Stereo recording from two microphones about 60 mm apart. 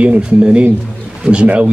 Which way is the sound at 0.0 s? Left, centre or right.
Centre.